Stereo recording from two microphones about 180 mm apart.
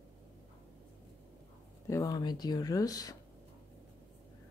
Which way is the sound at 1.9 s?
20° left (ahead or behind).